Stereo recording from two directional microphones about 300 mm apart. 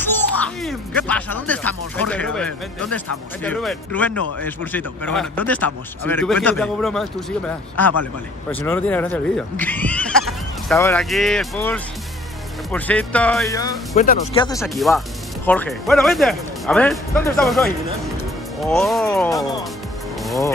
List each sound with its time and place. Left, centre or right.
0.6 s speech: centre
13.9 s speech: left
14.4 s speech: centre
14.7 s speech: centre